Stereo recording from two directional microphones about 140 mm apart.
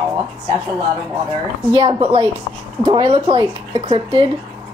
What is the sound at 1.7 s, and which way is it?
A woman's voice, 35° right (ahead or behind).